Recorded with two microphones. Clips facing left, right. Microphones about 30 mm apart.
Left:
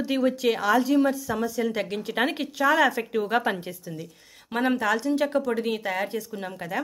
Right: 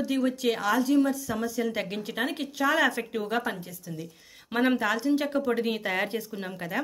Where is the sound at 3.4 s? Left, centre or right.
Left.